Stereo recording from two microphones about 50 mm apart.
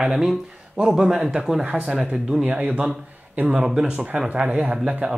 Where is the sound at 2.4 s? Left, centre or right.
Right.